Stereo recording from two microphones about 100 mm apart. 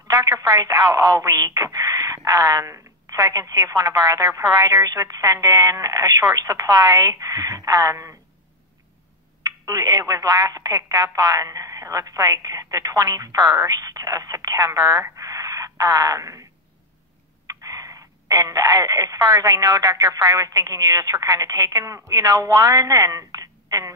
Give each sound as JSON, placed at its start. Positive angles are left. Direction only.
{"t": 0.1, "sound": "speech", "side_deg": -35}
{"t": 9.4, "sound": "a woman's voice", "side_deg": -35}
{"t": 17.5, "sound": "speech", "side_deg": -35}